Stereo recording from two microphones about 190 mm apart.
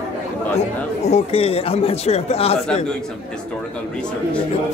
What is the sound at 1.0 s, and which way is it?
Speech, 35° left (ahead or behind).